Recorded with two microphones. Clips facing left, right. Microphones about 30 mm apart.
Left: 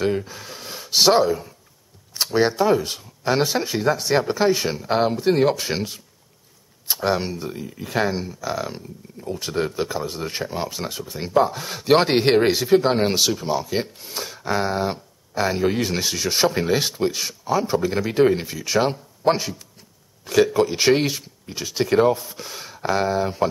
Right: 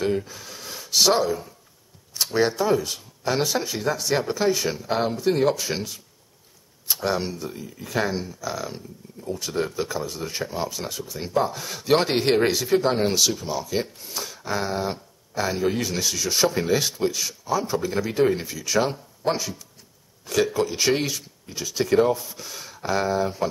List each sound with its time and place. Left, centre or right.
0.0 s gasp: centre
0.8 s speech: left
9.5 s speech: centre
20.5 s speech: left